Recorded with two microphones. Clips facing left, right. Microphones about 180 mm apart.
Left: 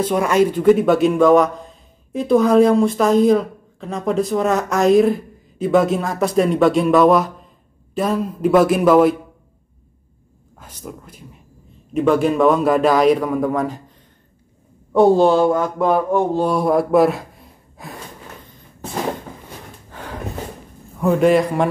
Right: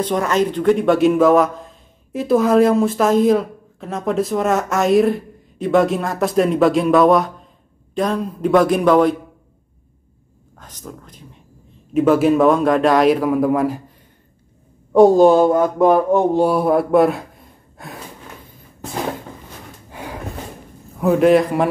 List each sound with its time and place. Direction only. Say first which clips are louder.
0.0 s speech: left 2 dB; 10° left (ahead or behind)
10.6 s a sound: left 1 dB; 10° left (ahead or behind)
11.9 s speech: right 2 dB; 5° right (ahead or behind)
16.4 s speech: right 1 dB; centre (ahead or behind)
19.9 s snort: right 2 dB; 10° right (ahead or behind)
21.0 s speech: right 1 dB; centre (ahead or behind)